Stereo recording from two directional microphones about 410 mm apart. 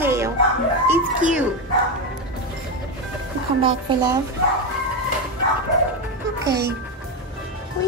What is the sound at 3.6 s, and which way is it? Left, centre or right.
Speech, centre.